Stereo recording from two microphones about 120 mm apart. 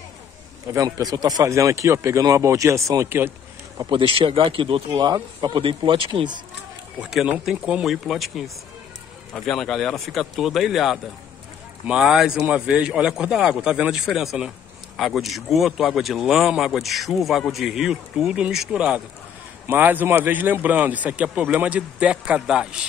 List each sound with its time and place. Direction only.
0.7 s speech: 30° right (ahead or behind)
3.9 s speech: 50° right (ahead or behind)
7.0 s a man's voice: 5° right (ahead or behind)